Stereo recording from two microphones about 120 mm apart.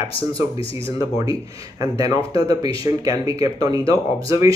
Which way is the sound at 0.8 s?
25° right (ahead or behind).